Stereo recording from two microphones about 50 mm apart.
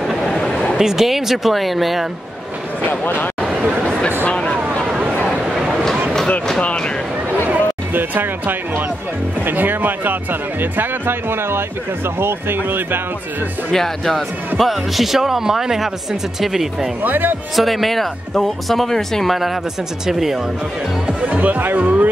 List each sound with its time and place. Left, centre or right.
0.0 s a sound: centre
0.7 s speech: centre
2.9 s speech: left
4.3 s a sound: left
4.9 s a sound: right
6.6 s speech: left
7.5 s speech: right
13.7 s speech: centre
17.0 s speech: right
17.6 s speech: centre
21.2 s speech: right